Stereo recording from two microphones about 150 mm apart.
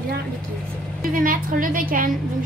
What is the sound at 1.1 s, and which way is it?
Speech, 70° right (ahead or behind).